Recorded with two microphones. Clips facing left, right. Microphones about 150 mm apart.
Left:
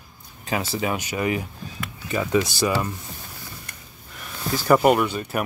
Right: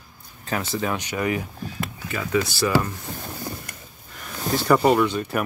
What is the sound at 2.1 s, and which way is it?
Speech, 20° left (ahead or behind).